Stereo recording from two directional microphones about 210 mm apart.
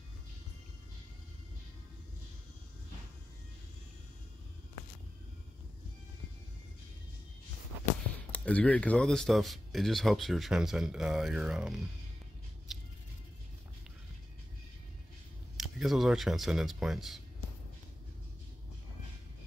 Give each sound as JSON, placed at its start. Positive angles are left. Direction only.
{"t": 8.3, "sound": "speech", "side_deg": 5}
{"t": 15.5, "sound": "speech", "side_deg": 0}